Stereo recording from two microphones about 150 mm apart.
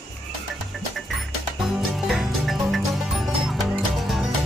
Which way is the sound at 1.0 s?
Centre (ahead or behind).